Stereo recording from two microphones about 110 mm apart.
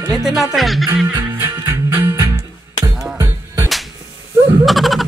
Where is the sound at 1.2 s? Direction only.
20° right (ahead or behind).